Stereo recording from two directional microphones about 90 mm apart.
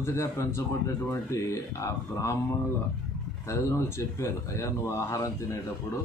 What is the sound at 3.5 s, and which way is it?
Speech, 30° left (ahead or behind).